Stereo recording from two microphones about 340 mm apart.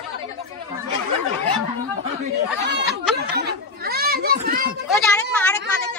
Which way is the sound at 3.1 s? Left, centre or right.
Right.